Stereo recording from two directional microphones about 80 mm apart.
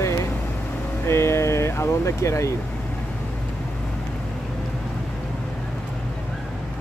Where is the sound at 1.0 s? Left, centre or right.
Left.